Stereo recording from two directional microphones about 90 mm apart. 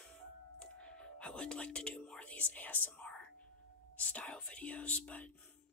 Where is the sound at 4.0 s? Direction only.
15° left (ahead or behind).